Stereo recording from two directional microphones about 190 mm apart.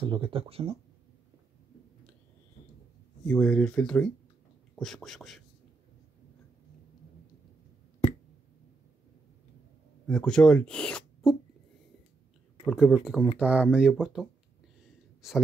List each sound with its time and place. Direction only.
0.0 s speech: 25° right (ahead or behind)
3.3 s speech: 5° left (ahead or behind)
10.0 s speech: 5° left (ahead or behind)
12.6 s speech: centre (ahead or behind)